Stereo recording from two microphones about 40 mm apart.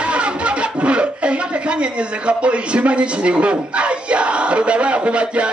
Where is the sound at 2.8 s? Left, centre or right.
Right.